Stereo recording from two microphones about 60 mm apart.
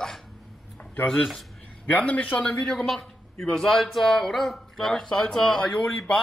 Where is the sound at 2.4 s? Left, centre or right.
Centre.